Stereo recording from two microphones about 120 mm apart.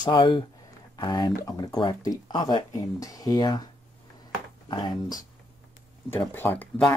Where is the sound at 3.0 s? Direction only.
30° left (ahead or behind).